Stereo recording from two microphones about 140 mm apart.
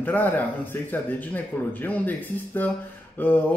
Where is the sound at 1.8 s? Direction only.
15° left (ahead or behind).